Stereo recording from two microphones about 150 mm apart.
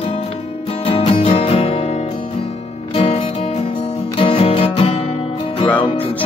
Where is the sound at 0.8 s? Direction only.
40° left (ahead or behind).